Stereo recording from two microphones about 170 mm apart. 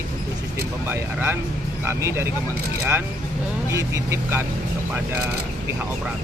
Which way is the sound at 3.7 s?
15° right (ahead or behind).